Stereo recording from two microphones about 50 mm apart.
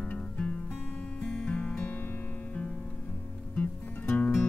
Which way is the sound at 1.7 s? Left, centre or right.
Left.